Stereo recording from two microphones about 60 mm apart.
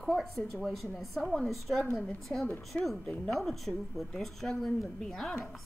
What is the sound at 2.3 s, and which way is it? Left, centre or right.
Speech, left.